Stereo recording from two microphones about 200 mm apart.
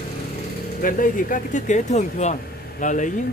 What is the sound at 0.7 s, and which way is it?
Speech, 45° left (ahead or behind).